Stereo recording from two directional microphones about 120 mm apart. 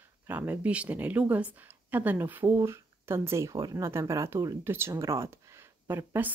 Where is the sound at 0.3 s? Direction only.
15° right (ahead or behind).